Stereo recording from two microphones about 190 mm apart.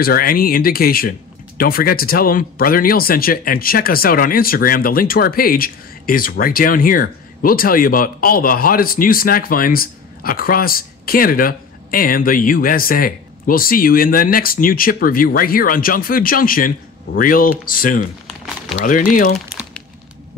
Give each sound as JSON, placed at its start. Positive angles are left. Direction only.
{"t": 0.0, "sound": "speech", "side_deg": 50}
{"t": 18.2, "sound": "a sound", "side_deg": 0}
{"t": 18.9, "sound": "speech", "side_deg": 45}
{"t": 19.3, "sound": "crumpling", "side_deg": 0}